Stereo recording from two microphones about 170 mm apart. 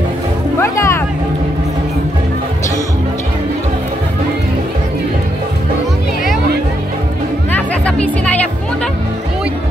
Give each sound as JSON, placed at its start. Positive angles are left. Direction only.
{"t": 0.6, "sound": "speech", "side_deg": 15}
{"t": 7.5, "sound": "music", "side_deg": 10}